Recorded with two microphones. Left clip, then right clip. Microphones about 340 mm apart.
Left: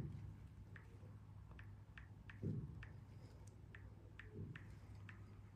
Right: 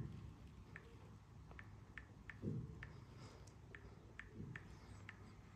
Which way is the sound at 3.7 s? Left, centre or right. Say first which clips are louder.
Right 4 dB; centre.